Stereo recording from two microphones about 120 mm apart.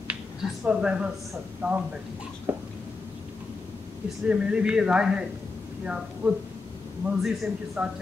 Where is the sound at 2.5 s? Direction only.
20° right (ahead or behind).